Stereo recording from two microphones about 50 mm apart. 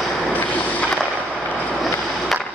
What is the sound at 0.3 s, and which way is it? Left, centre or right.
Vehicle, left.